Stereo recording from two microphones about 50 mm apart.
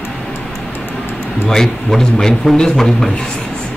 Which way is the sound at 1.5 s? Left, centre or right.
Centre.